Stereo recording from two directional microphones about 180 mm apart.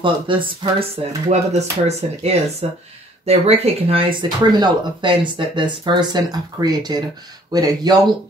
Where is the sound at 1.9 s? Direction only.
35° right (ahead or behind).